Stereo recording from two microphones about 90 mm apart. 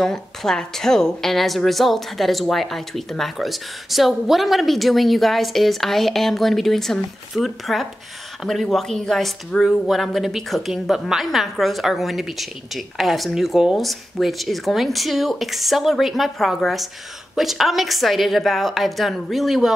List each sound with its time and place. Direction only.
0.0 s speech: 5° left (ahead or behind)